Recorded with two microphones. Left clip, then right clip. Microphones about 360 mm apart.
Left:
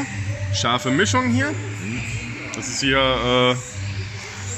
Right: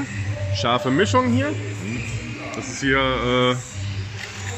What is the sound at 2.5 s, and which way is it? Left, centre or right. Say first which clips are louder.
A man's voice: left 1 dB; centre.